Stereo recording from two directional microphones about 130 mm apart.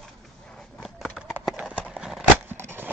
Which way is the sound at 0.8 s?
Centre (ahead or behind).